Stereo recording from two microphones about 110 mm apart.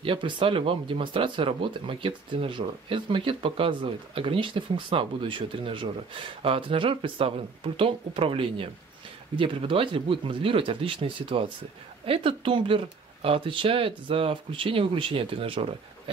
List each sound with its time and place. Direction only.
0.0 s speech: 50° right (ahead or behind)